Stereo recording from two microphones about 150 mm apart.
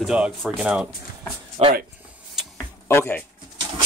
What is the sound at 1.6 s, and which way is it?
Speech, 45° right (ahead or behind).